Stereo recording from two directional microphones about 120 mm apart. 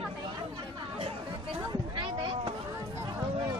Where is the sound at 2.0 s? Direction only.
45° right (ahead or behind).